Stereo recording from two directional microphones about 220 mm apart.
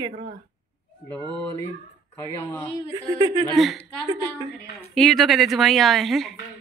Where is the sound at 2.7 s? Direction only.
20° right (ahead or behind).